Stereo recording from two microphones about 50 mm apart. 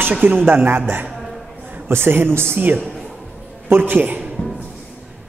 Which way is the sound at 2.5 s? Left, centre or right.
Right.